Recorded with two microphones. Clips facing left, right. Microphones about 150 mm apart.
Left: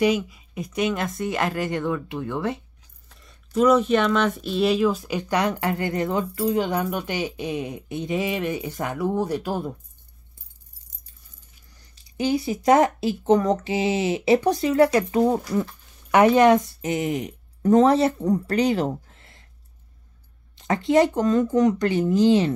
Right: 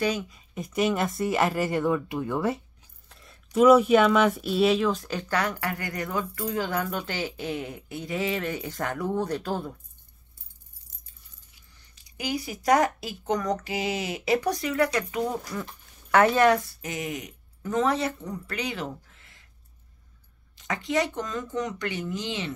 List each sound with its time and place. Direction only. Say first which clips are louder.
0.0 s speech: left 6 dB; 10° left (ahead or behind)
0.6 s speech: even; centre (ahead or behind)
11.7 s speech: left 11 dB; 35° left (ahead or behind)
16.1 s speech: left 4 dB; 15° left (ahead or behind); by 19.4 s 35° left (ahead or behind)
20.5 s speech: left 8 dB; 30° left (ahead or behind)